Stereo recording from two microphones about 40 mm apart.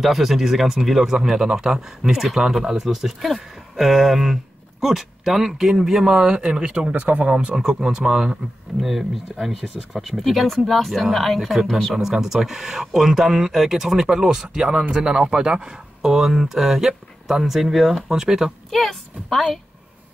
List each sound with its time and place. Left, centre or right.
0.0 s speech: centre; by 6.9 s right
6.9 s speech: right
7.2 s speech: right
18.7 s speech: centre